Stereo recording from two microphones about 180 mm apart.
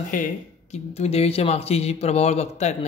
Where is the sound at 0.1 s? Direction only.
40° left (ahead or behind).